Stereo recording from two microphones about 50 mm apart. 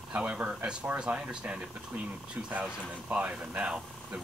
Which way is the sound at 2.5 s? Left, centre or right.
Right.